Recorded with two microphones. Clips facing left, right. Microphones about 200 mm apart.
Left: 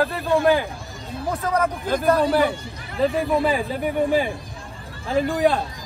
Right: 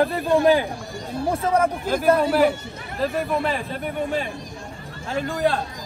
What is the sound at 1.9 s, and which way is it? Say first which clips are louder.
Speech: left 1 dB; 5° right (ahead or behind).